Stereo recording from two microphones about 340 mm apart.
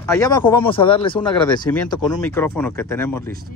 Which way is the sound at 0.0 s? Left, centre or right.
Centre.